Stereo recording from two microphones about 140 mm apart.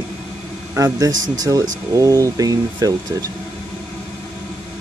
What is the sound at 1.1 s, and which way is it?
Speech, 65° right (ahead or behind).